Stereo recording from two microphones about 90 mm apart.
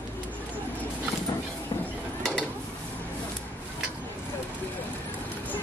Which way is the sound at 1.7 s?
60° left (ahead or behind).